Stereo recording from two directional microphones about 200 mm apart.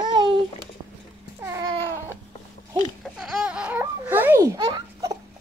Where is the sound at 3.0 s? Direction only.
Centre (ahead or behind); by 5.1 s 20° right (ahead or behind).